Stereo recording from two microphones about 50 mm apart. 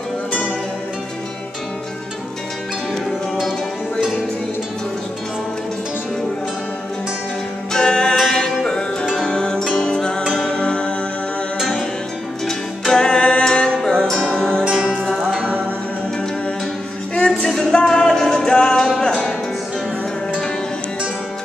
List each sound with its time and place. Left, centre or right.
7.7 s music: centre
11.5 s music: centre
14.7 s music: centre
17.4 s music: centre